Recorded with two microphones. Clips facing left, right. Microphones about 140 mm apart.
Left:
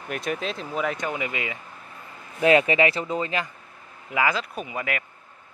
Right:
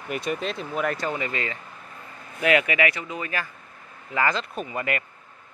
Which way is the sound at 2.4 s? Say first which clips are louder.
Left 3 dB; 30° left (ahead or behind).